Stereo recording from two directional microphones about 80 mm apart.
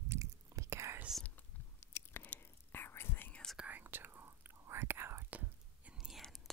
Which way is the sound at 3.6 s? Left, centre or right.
Right.